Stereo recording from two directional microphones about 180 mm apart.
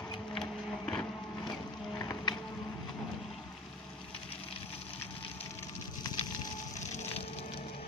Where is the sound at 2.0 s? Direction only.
20° left (ahead or behind).